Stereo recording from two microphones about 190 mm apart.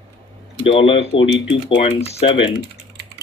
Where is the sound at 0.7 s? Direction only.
30° left (ahead or behind).